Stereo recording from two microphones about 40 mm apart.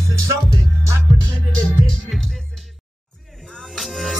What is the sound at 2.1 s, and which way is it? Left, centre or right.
Music, centre.